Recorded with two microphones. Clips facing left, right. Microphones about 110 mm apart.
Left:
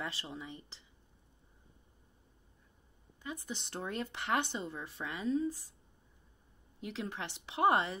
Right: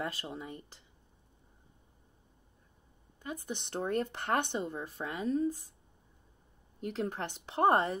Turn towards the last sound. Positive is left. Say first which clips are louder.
# right 3 dB
turn(degrees=-45)  # may be behind; listen again after turning